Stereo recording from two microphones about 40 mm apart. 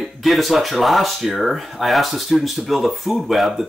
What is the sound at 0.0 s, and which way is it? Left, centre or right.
Speech, centre.